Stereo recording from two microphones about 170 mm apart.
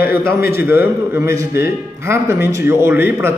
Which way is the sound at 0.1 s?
15° right (ahead or behind).